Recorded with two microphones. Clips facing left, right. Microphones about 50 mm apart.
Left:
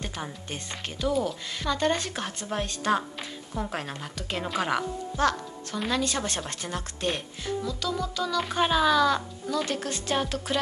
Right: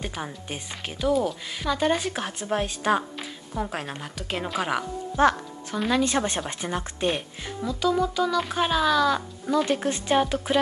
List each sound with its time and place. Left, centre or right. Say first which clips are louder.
0.0 s speech: right 2 dB; centre
5.2 s speech: right 5 dB; right
5.7 s speech: right 4 dB; centre
6.0 s speech: right 5 dB; right
8.4 s speech: left 3 dB; centre
9.7 s speech: right 6 dB; centre